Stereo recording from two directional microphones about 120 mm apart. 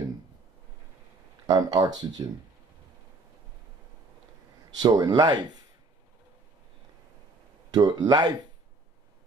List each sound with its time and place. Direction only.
1.5 s speech: 30° right (ahead or behind)
4.7 s speech: 35° right (ahead or behind)
7.7 s speech: 35° right (ahead or behind)